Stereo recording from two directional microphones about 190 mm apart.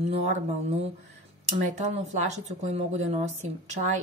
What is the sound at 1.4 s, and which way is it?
Speech, 35° right (ahead or behind).